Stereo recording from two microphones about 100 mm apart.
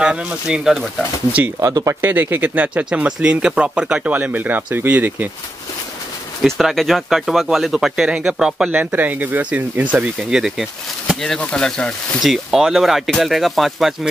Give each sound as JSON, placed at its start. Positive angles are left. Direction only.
{"t": 0.0, "sound": "speech", "side_deg": -10}
{"t": 1.6, "sound": "speech", "side_deg": -35}
{"t": 2.0, "sound": "speech", "side_deg": -20}
{"t": 6.4, "sound": "speech", "side_deg": 0}
{"t": 8.6, "sound": "speech", "side_deg": -20}
{"t": 10.3, "sound": "speech", "side_deg": -5}
{"t": 11.3, "sound": "speech", "side_deg": 10}